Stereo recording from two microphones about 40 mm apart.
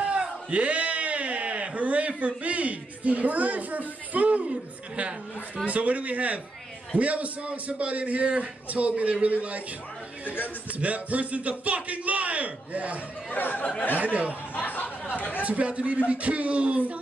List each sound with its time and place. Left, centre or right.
0.1 s a sound: right
5.7 s a man's voice: right
10.2 s speech: left
10.7 s a man's voice: right
13.3 s speech: left
13.9 s a man's voice: right
14.5 s speech: left
15.4 s a man's voice: right